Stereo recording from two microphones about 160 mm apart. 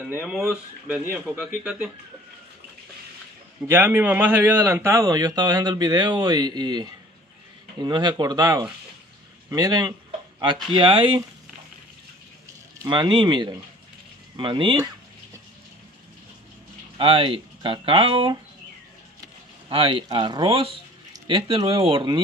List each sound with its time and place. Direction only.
0.1 s speech: 5° right (ahead or behind)
3.6 s a man's voice: 15° right (ahead or behind); by 11.2 s 30° right (ahead or behind)
12.8 s a man's voice: 30° right (ahead or behind)
16.9 s speech: 35° right (ahead or behind)
19.7 s speech: 35° right (ahead or behind)